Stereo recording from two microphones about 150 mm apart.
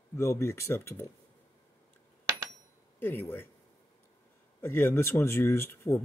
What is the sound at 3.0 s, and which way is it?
Speech, 15° left (ahead or behind).